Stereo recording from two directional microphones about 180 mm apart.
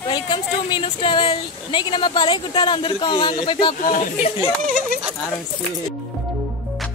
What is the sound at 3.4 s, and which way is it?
Speech, 25° left (ahead or behind).